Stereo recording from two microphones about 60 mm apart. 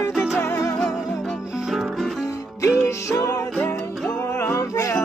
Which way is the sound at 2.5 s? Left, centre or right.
Left.